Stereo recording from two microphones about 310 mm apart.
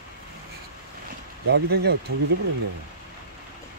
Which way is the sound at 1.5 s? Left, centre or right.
Right.